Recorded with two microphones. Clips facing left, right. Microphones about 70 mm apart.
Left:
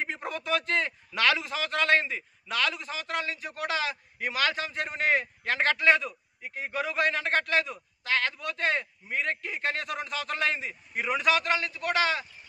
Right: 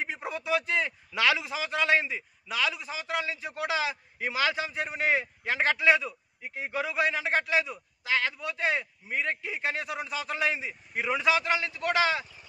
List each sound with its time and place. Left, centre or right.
0.0 s a man's voice: centre